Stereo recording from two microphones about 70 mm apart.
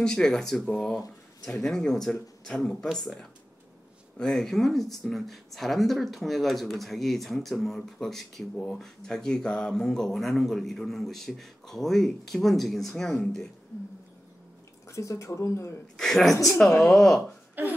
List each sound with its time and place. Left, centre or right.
0.0 s speech: centre
14.9 s speech: left
16.0 s speech: centre
17.6 s a sound: right